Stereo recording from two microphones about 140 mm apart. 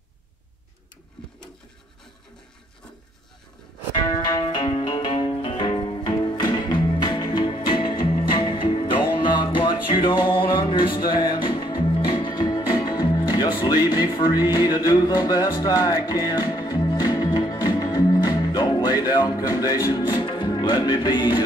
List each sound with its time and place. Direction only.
4.3 s music: 35° left (ahead or behind)